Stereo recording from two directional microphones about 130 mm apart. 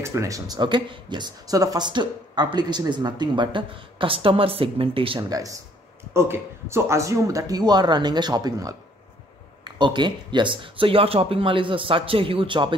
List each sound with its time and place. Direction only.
0.0 s speech: 25° right (ahead or behind); by 5.2 s 45° right (ahead or behind)
6.1 s a man's voice: 20° right (ahead or behind); by 12.7 s 40° right (ahead or behind)